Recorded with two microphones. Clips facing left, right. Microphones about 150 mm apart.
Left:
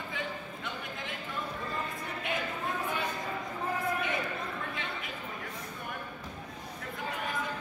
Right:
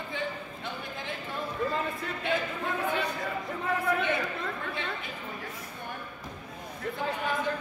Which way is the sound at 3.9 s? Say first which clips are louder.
Right 8 dB; 65° right (ahead or behind).